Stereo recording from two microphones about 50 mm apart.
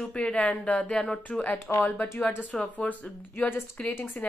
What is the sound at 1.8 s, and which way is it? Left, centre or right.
Speech, left.